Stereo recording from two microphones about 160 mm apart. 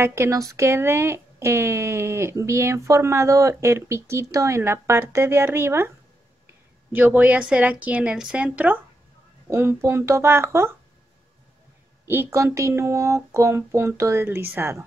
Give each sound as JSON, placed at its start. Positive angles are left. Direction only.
{"t": 0.0, "sound": "speech", "side_deg": -15}
{"t": 6.9, "sound": "speech", "side_deg": -10}
{"t": 12.1, "sound": "speech", "side_deg": -15}